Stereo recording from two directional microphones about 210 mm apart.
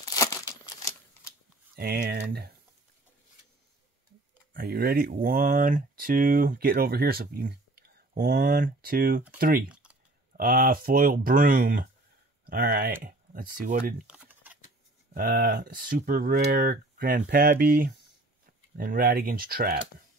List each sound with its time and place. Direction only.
0.0 s crumpling: 15° left (ahead or behind)
1.8 s speech: 45° right (ahead or behind)
4.6 s speech: 45° right (ahead or behind)
9.7 s typing: 5° right (ahead or behind)
10.3 s speech: 45° right (ahead or behind)
14.0 s typing: 5° right (ahead or behind)
15.1 s speech: 40° right (ahead or behind)